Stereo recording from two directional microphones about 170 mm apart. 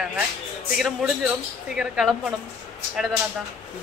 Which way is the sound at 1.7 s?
Centre (ahead or behind).